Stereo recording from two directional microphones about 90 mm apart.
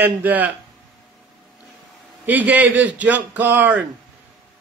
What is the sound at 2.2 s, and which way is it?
Speech, 15° right (ahead or behind).